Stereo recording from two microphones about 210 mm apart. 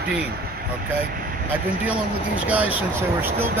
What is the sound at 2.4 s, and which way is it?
Speech, 5° right (ahead or behind).